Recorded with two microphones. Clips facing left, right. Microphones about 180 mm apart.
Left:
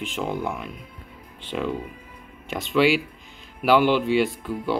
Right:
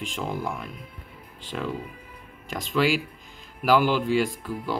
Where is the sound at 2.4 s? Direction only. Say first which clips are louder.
Left 4 dB; 40° right (ahead or behind).